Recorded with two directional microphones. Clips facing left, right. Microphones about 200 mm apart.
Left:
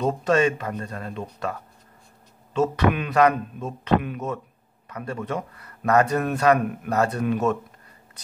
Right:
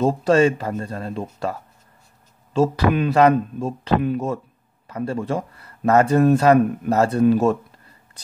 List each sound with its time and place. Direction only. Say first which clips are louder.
0.0 s a man's voice: right 4 dB; 30° right (ahead or behind)
2.5 s a man's voice: right 3 dB; 30° right (ahead or behind)